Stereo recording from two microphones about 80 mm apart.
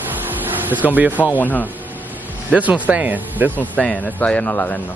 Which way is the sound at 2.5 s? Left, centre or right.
Centre.